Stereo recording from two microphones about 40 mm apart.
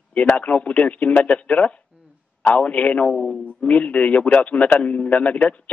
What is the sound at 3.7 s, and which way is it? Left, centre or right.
A man's voice, left.